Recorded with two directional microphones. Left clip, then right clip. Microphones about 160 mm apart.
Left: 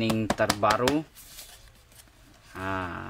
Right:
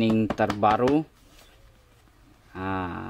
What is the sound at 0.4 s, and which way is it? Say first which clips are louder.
Speech: left 1 dB; 35° right (ahead or behind).